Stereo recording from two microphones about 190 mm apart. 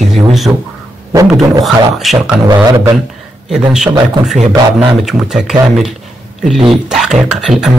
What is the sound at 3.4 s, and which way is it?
Speech, 5° right (ahead or behind).